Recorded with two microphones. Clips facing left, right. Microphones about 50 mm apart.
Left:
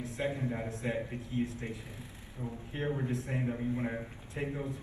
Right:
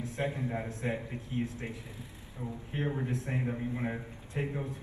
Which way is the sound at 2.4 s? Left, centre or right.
Right.